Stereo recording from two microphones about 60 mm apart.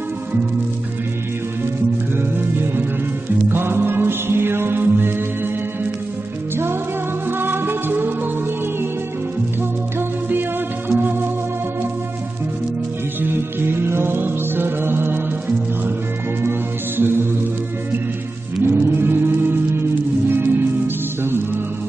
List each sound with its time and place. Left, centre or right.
2.1 s music: right
6.5 s music: right
10.9 s music: right
13.2 s music: right
16.4 s music: right
18.6 s music: right